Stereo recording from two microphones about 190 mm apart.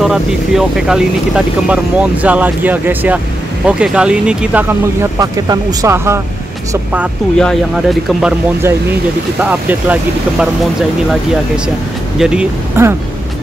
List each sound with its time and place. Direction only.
0.0 s speech: centre (ahead or behind)
5.2 s speech: 20° right (ahead or behind); by 8.3 s centre (ahead or behind)
9.4 s speech: 10° right (ahead or behind)
11.1 s speech: 5° right (ahead or behind)